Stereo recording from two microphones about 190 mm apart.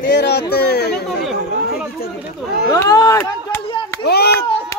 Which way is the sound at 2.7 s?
20° left (ahead or behind).